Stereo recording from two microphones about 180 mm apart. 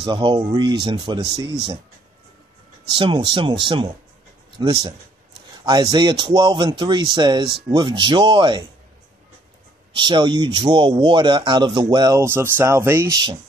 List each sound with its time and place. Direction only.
0.0 s speech: 25° right (ahead or behind)
2.9 s speech: 25° right (ahead or behind)
9.9 s speech: 25° right (ahead or behind)